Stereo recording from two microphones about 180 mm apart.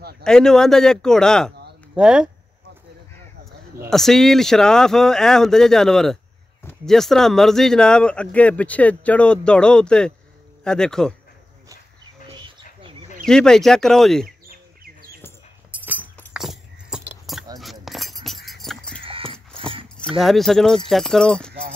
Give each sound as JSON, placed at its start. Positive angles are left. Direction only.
{"t": 0.2, "sound": "speech", "side_deg": 5}
{"t": 3.9, "sound": "speech", "side_deg": 0}
{"t": 12.4, "sound": "bird", "side_deg": -25}
{"t": 13.2, "sound": "speech", "side_deg": 5}
{"t": 14.8, "sound": "bird", "side_deg": -55}
{"t": 16.3, "sound": "keys jangling", "side_deg": 0}
{"t": 17.8, "sound": "chink", "side_deg": 0}
{"t": 18.9, "sound": "dog", "side_deg": -30}
{"t": 20.0, "sound": "speech", "side_deg": 0}